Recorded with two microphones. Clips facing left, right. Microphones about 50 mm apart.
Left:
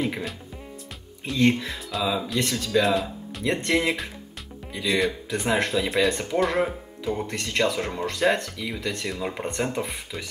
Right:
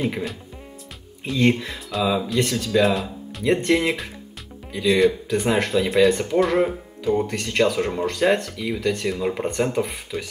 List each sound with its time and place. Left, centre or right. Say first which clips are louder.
0.0 s speech: right 3 dB; centre
1.4 s speech: right 1 dB; centre